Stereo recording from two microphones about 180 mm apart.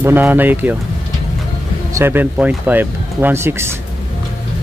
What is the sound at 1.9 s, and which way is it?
Speech, 10° right (ahead or behind).